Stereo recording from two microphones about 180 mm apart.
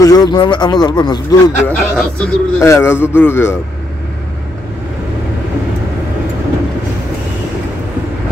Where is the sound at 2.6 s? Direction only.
15° left (ahead or behind).